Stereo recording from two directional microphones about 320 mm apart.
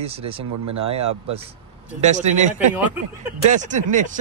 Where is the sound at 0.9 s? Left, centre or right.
Right.